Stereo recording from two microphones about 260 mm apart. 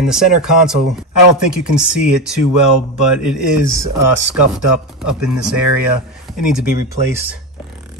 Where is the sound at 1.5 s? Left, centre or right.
Centre.